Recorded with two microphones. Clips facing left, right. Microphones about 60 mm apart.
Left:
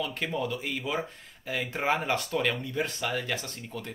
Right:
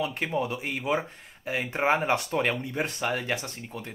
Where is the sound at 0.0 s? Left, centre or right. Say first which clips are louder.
Right 3 dB; right.